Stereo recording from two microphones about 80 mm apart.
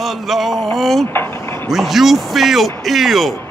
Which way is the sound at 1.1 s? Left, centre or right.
Left.